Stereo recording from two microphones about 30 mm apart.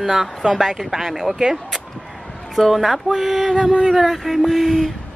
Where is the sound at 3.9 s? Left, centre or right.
Centre.